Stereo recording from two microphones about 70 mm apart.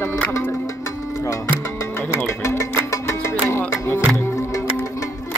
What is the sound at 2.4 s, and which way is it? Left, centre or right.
Music, left.